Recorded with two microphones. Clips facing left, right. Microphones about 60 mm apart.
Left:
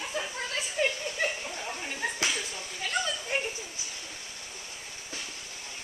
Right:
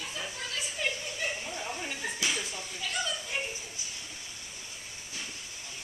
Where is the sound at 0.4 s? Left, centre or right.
Left.